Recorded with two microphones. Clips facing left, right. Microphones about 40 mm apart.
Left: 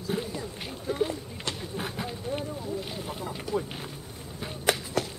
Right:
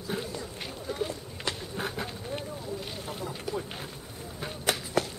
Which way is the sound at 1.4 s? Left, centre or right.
Centre.